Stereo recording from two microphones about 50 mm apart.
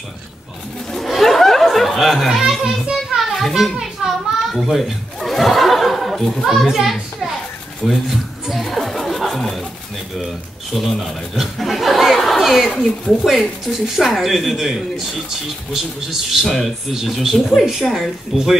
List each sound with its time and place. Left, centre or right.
0.9 s music: centre
3.2 s children playing: centre
4.6 s chuckle: centre
10.1 s a man's voice: centre
13.3 s speech: centre